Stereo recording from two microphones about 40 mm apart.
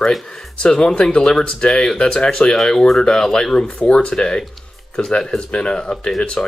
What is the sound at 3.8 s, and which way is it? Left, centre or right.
Speech, left.